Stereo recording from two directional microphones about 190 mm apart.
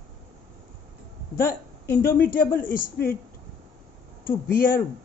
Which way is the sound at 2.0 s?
50° left (ahead or behind).